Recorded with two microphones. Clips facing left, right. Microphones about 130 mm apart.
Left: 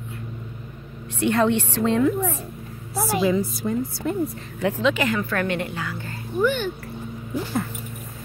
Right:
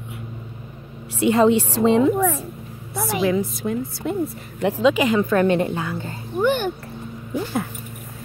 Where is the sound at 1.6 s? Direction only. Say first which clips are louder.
Right 4 dB; 15° right (ahead or behind).